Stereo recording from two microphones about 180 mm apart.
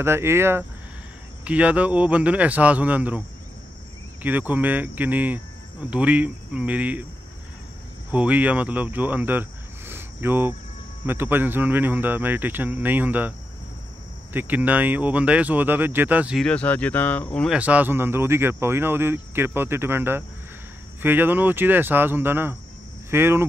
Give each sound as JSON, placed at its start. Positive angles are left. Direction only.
{"t": 0.0, "sound": "speech", "side_deg": -15}
{"t": 8.1, "sound": "speech", "side_deg": -10}
{"t": 14.3, "sound": "speech", "side_deg": -10}
{"t": 16.4, "sound": "speech", "side_deg": 5}
{"t": 17.6, "sound": "speech", "side_deg": -10}